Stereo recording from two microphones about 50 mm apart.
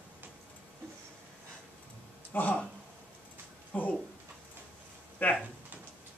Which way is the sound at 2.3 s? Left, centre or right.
Left.